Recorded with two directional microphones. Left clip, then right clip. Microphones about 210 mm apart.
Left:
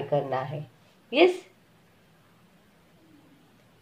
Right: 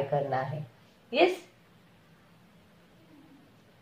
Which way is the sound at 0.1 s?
45° left (ahead or behind).